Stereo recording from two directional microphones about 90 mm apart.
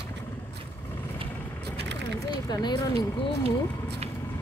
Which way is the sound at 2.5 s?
50° left (ahead or behind).